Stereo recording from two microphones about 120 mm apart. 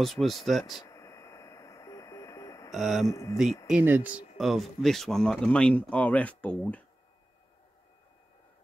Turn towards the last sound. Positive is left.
turn(degrees=10)  # may be behind; listen again after turning